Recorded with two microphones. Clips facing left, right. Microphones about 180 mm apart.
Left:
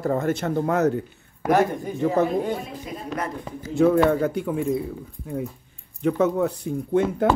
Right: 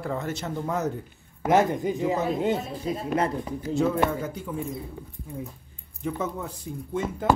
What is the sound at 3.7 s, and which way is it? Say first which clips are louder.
Speech: left 6 dB; 55° left (ahead or behind).